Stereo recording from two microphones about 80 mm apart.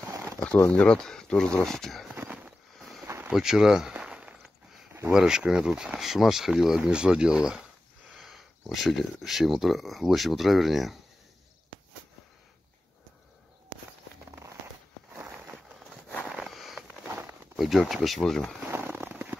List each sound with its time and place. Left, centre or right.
0.1 s a sound: right
0.7 s speech: centre
2.1 s a sound: right
3.3 s speech: centre
3.9 s walk: centre
5.1 s speech: centre
16.4 s a sound: centre
17.6 s speech: centre
18.9 s fireworks: right